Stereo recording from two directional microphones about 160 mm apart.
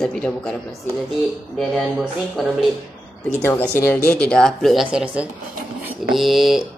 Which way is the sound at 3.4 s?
10° left (ahead or behind).